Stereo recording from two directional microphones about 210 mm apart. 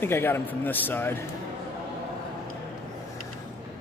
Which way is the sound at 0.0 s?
10° left (ahead or behind).